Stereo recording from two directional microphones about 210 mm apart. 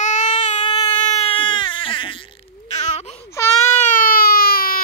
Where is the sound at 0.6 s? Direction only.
20° left (ahead or behind).